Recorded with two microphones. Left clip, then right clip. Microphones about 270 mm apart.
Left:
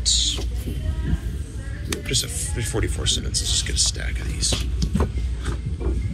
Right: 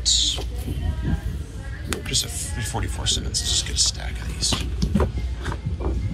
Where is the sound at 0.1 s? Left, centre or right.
Centre.